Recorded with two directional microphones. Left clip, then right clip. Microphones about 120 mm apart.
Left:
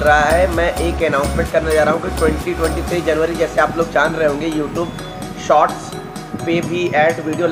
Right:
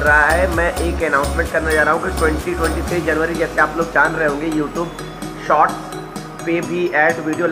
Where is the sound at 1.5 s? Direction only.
25° left (ahead or behind).